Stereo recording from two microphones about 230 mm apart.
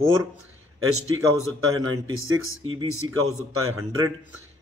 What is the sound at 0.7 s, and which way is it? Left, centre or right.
A man's voice, right.